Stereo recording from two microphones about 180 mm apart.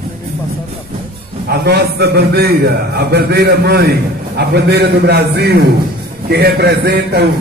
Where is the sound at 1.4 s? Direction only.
60° right (ahead or behind).